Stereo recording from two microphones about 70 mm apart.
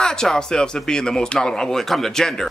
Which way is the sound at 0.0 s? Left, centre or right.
Centre.